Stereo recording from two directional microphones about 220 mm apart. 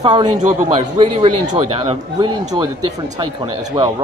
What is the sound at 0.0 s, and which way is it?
Speech, 20° right (ahead or behind).